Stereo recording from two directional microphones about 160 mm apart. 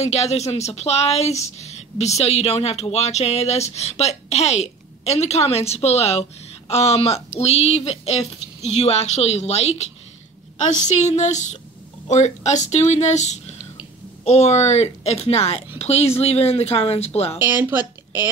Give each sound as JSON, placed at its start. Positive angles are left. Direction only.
{"t": 0.0, "sound": "a woman's voice", "side_deg": 40}
{"t": 17.4, "sound": "speech", "side_deg": -15}